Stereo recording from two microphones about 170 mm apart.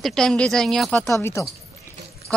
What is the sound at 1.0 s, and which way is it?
Speech, 15° left (ahead or behind).